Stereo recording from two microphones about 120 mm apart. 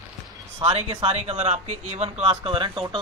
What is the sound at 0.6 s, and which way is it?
Speech, 60° right (ahead or behind).